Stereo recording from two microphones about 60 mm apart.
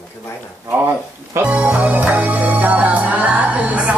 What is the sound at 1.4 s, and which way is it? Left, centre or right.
Music, right.